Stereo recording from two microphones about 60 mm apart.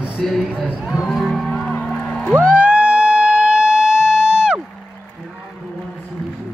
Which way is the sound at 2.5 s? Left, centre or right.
Right.